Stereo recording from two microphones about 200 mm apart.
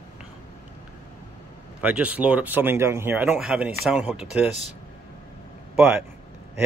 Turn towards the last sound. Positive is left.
turn(degrees=-10)  # may be behind; listen again after turning